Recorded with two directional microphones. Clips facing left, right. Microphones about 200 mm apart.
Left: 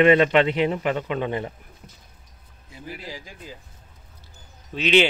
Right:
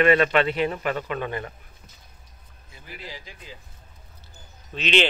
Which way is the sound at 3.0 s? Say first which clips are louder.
Left 3 dB; 40° left (ahead or behind).